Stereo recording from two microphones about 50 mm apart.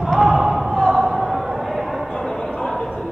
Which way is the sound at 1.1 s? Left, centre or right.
Centre.